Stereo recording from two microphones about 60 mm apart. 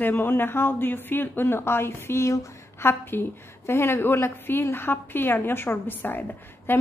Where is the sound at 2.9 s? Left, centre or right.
Left.